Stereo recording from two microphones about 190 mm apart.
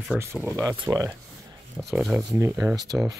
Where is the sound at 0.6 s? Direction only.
15° right (ahead or behind).